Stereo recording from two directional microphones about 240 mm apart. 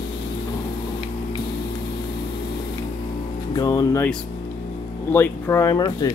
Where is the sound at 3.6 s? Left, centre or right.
Centre.